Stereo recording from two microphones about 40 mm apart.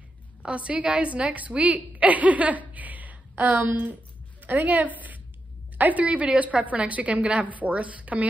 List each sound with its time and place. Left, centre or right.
0.4 s a woman's voice: right
7.4 s a woman's voice: right